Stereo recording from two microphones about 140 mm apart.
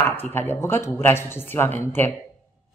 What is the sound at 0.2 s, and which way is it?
Speech, 15° left (ahead or behind).